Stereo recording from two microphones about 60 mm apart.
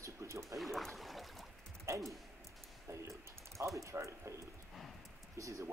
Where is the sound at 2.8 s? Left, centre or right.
Right.